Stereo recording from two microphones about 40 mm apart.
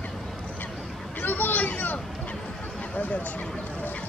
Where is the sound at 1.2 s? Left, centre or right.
Left.